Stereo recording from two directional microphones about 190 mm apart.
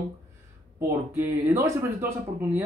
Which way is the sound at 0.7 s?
15° right (ahead or behind).